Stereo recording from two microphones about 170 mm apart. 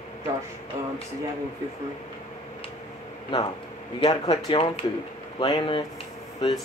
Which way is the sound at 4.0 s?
25° left (ahead or behind).